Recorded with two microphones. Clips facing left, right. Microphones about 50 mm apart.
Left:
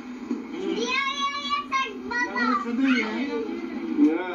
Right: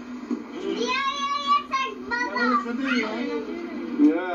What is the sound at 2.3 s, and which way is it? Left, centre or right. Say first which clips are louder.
Speech: right 3 dB; centre.